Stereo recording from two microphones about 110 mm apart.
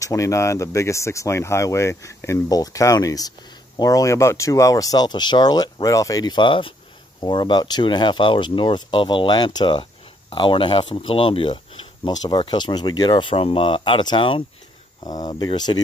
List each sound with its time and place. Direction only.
0.0 s speech: 30° left (ahead or behind); by 12.2 s 60° left (ahead or behind)
12.2 s speech: 45° left (ahead or behind)
15.0 s speech: 35° left (ahead or behind)